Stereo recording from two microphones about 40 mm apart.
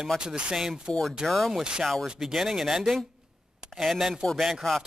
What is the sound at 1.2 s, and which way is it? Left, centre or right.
Speech, centre.